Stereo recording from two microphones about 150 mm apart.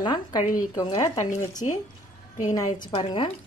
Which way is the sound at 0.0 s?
30° left (ahead or behind).